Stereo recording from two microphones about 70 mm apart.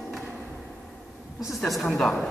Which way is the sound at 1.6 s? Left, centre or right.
Centre.